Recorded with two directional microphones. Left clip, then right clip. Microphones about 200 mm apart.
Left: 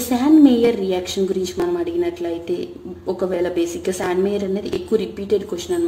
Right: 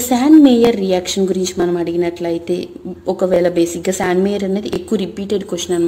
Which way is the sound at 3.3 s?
40° right (ahead or behind).